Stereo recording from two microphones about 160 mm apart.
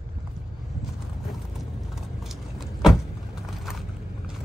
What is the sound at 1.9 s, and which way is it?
Vehicle, 5° right (ahead or behind).